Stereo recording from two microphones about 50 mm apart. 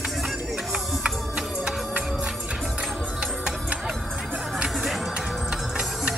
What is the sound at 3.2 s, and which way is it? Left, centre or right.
Music, centre.